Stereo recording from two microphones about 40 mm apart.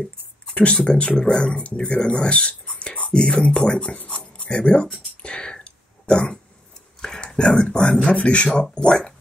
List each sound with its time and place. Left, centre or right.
0.5 s speech: left
4.2 s writing: left
5.2 s whispering: left
7.0 s a sound: centre
8.0 s speech: left